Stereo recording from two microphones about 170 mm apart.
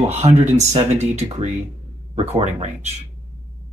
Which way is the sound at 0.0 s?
40° right (ahead or behind).